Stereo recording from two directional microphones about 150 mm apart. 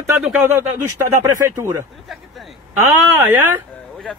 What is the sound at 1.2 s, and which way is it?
Speech, 20° right (ahead or behind).